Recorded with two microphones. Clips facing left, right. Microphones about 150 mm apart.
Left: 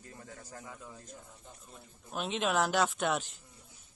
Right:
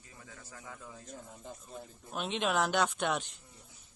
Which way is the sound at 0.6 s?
5° left (ahead or behind).